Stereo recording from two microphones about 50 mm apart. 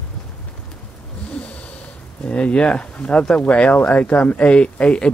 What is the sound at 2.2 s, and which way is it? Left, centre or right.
Speech, left.